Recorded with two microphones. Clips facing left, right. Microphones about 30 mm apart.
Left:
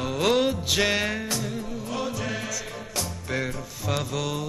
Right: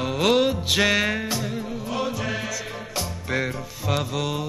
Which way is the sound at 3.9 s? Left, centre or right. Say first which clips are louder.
Right 3 dB; centre.